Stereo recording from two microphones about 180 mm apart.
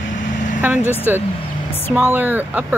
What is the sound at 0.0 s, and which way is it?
Vehicle, 90° left.